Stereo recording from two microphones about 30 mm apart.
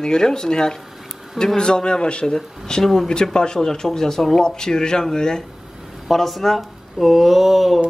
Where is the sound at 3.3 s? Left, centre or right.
Left.